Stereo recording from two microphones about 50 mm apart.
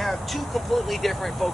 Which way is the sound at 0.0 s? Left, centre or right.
Centre.